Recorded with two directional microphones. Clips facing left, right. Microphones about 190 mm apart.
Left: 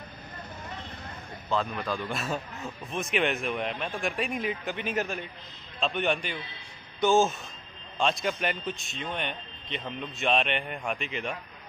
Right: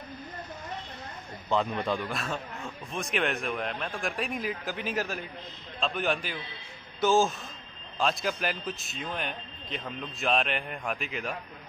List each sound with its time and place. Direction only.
1.5 s a man's voice: 20° right (ahead or behind)
2.0 s a man's voice: 5° left (ahead or behind)